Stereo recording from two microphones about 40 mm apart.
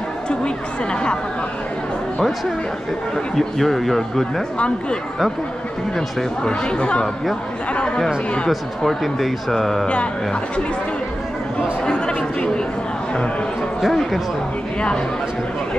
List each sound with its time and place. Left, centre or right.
3.3 s speech: centre
5.9 s speech: left
8.5 s speech: centre
13.7 s speech: centre